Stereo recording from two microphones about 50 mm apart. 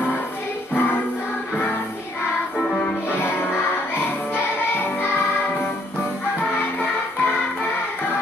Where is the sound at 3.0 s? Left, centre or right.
Left.